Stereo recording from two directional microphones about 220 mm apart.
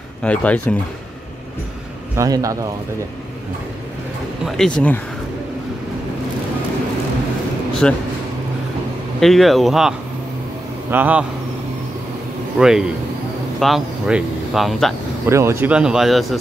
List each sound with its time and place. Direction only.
0.2 s speech: 5° left (ahead or behind)
2.1 s a man's voice: 15° right (ahead or behind)
4.5 s speech: centre (ahead or behind)
7.8 s speech: 5° left (ahead or behind)
9.2 s a man's voice: centre (ahead or behind)
12.5 s speech: 5° right (ahead or behind)
15.2 s speech: 10° right (ahead or behind)